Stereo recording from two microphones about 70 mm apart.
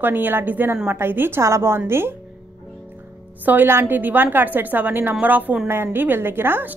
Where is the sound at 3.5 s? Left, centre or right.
Right.